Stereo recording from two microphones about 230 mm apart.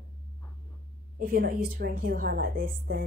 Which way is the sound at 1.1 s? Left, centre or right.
Right.